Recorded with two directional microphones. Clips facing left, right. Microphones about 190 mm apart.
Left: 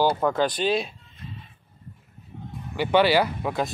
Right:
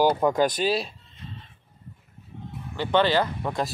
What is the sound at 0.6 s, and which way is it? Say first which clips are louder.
Speech: left 1 dB; 5° right (ahead or behind).